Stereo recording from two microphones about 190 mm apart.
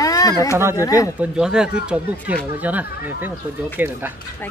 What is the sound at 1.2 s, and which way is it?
Speech, 5° right (ahead or behind).